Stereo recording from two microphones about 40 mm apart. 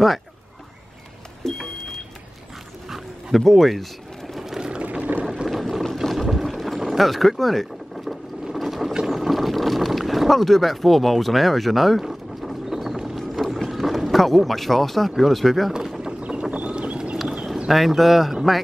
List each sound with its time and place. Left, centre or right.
1.4 s vehicle: centre
2.9 s dog: centre
4.3 s a sound: centre
4.6 s a sound: right
5.6 s a sound: centre
5.9 s boat: centre
6.8 s vehicle: centre
8.5 s a sound: centre
9.0 s boat: centre
13.6 s speech: centre
16.2 s vehicle: right
17.6 s speech: centre